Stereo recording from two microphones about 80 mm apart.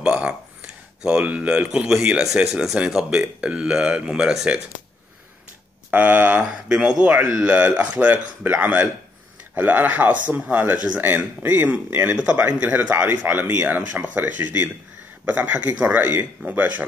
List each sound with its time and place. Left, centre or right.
0.0 s a sound: centre
1.0 s speech: centre
5.9 s speech: right
6.4 s speech: centre